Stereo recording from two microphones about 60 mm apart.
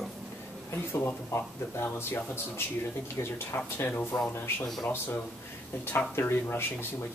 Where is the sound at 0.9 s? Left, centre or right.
Left.